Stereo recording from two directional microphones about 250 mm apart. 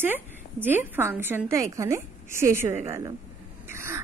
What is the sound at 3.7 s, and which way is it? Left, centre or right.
Crow, centre.